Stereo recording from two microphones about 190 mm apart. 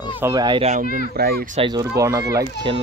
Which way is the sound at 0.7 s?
45° right (ahead or behind).